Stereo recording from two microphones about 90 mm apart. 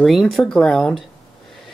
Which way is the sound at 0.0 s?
Centre (ahead or behind).